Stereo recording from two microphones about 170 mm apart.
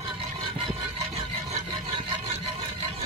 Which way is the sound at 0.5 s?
35° right (ahead or behind).